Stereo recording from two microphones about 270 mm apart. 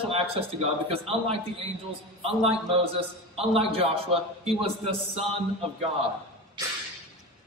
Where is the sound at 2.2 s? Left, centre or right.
Right.